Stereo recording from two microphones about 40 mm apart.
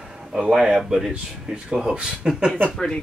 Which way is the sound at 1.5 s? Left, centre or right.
Centre.